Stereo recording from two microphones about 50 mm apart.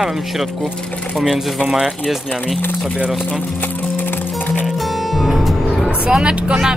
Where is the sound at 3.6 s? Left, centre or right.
Left.